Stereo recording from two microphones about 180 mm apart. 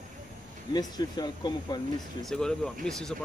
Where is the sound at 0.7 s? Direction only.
20° left (ahead or behind).